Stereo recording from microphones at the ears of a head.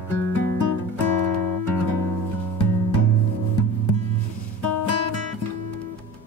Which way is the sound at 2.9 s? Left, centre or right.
Left.